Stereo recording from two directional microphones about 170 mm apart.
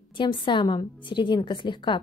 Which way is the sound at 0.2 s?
30° left (ahead or behind).